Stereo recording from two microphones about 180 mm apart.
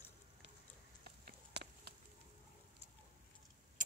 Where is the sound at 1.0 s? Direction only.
60° right (ahead or behind).